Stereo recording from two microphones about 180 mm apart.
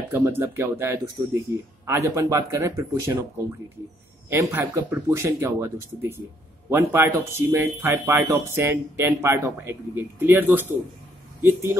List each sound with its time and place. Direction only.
0.1 s speech: 15° right (ahead or behind)
4.3 s speech: 15° right (ahead or behind)